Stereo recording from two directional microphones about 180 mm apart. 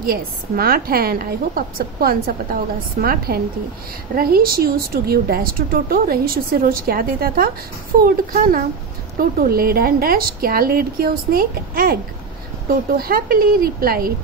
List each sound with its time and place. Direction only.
0.0 s a woman's voice: 55° right (ahead or behind)